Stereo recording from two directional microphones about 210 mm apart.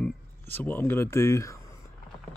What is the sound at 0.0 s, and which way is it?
Speech, 10° left (ahead or behind).